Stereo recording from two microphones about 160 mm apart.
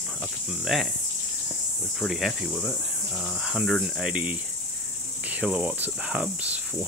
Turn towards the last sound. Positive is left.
turn(degrees=-10)  # may be behind; listen again after turning